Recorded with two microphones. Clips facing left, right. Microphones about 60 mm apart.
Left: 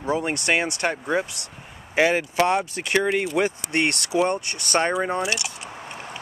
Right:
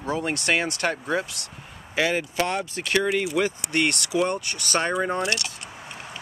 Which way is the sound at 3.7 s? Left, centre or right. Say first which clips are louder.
Left 1 dB; left.